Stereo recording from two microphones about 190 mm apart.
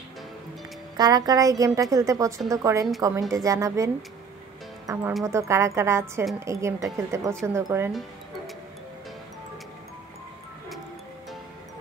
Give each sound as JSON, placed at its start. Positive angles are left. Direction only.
{"t": 0.9, "sound": "a woman's voice", "side_deg": -20}